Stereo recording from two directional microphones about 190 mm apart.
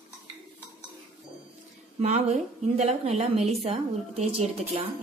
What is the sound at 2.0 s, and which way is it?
A woman's voice, 35° right (ahead or behind).